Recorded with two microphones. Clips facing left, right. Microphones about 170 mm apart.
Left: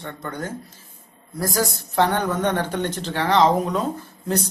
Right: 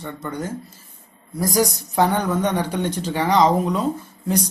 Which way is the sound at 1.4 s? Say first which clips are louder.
Right 4 dB; 15° right (ahead or behind).